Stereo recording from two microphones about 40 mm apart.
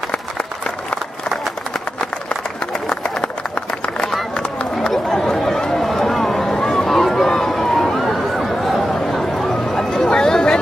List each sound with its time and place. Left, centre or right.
2.9 s run: left
4.9 s chatter: centre
5.6 s run: centre
7.2 s a sound: centre
8.4 s chatter: centre
9.8 s chatter: centre